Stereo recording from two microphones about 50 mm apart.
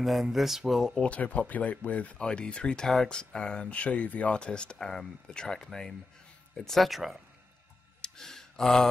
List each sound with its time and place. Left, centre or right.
0.0 s speech: centre
1.0 s speech: left
2.2 s speech: centre
8.0 s a sound: centre